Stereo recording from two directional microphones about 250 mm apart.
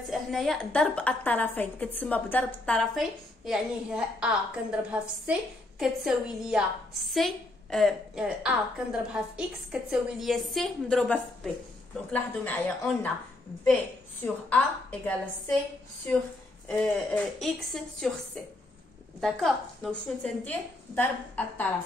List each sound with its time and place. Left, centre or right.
0.1 s a woman's voice: centre
14.2 s a woman's voice: centre
16.6 s a woman's voice: centre